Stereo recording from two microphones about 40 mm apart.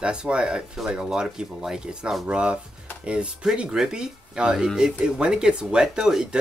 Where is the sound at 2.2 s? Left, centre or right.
Right.